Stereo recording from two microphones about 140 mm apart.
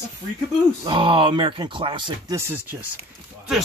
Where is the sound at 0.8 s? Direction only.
40° right (ahead or behind).